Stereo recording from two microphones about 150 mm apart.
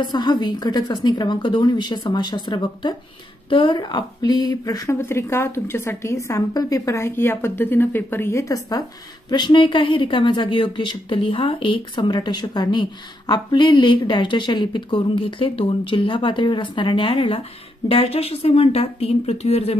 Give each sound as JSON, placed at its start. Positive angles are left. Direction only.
{"t": 0.0, "sound": "a woman's voice", "side_deg": 30}